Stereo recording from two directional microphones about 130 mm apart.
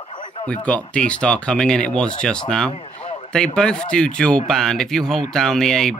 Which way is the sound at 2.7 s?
50° left (ahead or behind).